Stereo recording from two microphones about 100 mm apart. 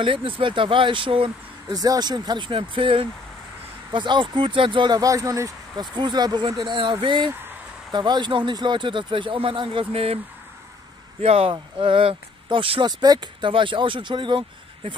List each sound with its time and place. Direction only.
0.0 s a man's voice: 60° right (ahead or behind)
1.7 s a man's voice: 40° right (ahead or behind); by 4.9 s 55° right (ahead or behind)
4.9 s speech: 35° right (ahead or behind)
5.8 s a man's voice: 45° right (ahead or behind); by 10.1 s 70° right (ahead or behind)
11.1 s speech: 75° right (ahead or behind)
11.5 s a man's voice: 60° right (ahead or behind)
12.8 s a man's voice: 45° right (ahead or behind)